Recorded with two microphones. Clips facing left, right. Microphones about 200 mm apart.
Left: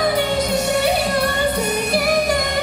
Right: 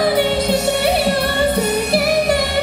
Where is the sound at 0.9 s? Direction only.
30° right (ahead or behind).